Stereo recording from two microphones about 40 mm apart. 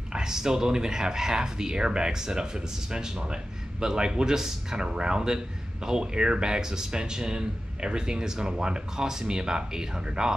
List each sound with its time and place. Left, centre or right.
0.1 s speech: centre